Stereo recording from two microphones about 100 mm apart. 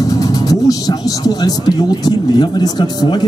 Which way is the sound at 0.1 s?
40° left (ahead or behind).